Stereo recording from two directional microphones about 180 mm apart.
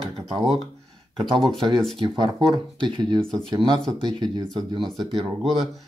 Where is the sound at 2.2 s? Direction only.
25° right (ahead or behind).